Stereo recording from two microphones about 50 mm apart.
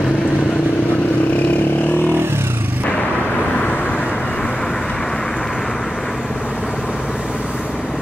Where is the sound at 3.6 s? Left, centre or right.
Left.